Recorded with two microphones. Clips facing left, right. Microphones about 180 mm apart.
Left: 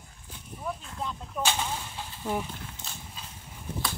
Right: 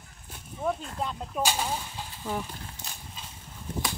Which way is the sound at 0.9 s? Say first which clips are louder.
Right 3 dB; 70° right (ahead or behind).